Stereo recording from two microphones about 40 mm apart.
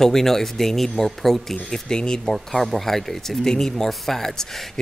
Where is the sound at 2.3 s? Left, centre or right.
Centre.